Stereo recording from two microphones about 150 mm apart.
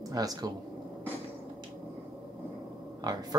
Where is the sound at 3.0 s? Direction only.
25° right (ahead or behind).